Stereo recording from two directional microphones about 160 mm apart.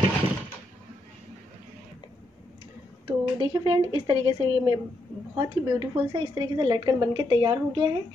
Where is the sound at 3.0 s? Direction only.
30° right (ahead or behind).